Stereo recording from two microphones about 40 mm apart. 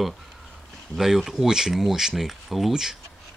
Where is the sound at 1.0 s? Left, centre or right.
Centre.